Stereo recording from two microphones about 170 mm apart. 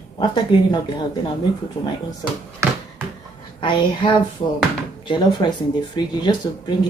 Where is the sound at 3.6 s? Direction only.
30° left (ahead or behind).